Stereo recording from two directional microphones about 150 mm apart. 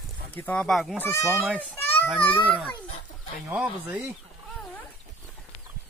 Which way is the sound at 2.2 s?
10° left (ahead or behind).